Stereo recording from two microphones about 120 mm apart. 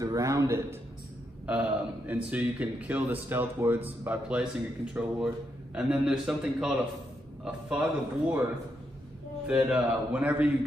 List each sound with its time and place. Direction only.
0.0 s a man's voice: 30° right (ahead or behind)
1.4 s speech: 10° right (ahead or behind)
9.5 s speech: 5° right (ahead or behind)